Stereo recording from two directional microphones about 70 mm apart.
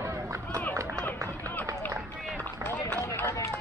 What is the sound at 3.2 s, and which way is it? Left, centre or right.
Run, left.